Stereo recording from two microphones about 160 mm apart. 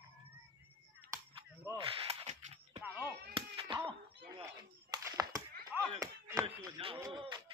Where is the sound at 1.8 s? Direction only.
35° right (ahead or behind).